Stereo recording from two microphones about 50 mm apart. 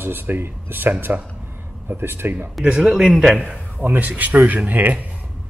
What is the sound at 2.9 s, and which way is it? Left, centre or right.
Speech, centre.